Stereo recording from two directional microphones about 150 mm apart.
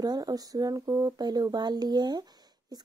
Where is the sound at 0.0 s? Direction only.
25° right (ahead or behind).